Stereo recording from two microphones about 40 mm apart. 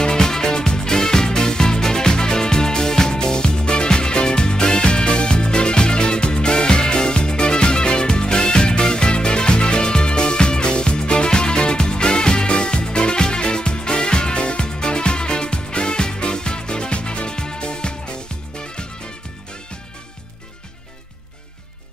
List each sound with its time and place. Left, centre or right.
0.0 s music: centre